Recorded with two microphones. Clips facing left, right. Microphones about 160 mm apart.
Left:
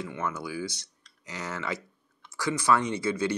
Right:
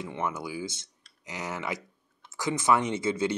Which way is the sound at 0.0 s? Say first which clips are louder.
Right 1 dB; 20° right (ahead or behind).